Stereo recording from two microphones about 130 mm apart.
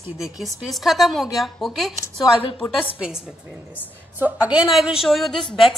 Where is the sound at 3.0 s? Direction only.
5° right (ahead or behind).